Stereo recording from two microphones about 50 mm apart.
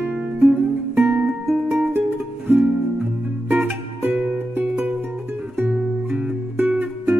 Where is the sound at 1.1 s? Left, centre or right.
Right.